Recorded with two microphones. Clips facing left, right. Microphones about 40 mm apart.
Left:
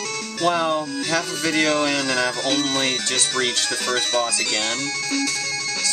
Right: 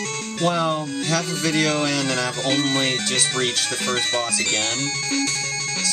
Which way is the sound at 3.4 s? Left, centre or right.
Right.